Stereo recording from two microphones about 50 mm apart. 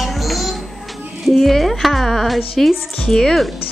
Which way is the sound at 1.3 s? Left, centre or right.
Centre.